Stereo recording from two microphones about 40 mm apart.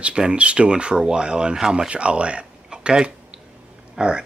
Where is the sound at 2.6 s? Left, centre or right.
Centre.